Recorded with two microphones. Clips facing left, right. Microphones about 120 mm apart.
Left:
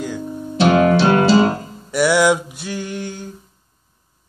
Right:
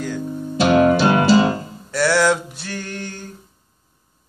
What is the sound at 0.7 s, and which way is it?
Music, 55° left (ahead or behind).